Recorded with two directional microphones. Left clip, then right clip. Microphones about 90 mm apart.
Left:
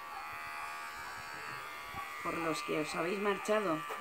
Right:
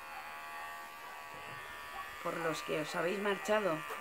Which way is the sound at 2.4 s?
5° right (ahead or behind).